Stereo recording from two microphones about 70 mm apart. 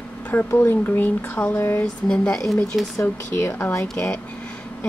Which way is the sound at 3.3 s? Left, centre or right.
Left.